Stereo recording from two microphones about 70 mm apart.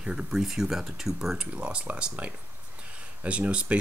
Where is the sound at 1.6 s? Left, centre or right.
Centre.